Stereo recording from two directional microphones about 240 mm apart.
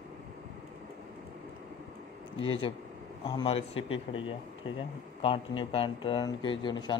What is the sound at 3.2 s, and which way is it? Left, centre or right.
Speech, left.